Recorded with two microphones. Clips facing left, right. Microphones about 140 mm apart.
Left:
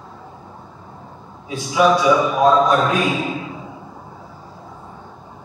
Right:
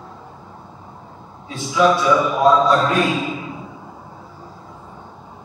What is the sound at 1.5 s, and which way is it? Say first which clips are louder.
A man's voice: left 1 dB; 15° left (ahead or behind).